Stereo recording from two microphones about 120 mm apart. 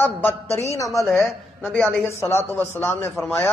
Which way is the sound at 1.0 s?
Centre (ahead or behind).